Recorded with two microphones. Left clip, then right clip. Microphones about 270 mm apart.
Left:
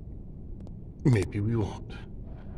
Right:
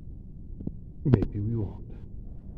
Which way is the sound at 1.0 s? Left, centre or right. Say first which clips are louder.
Even; centre.